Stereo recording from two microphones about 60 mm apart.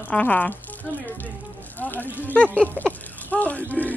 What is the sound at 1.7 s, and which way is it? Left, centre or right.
Speech, left.